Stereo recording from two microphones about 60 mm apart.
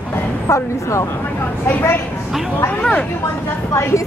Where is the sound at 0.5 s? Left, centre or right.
Left.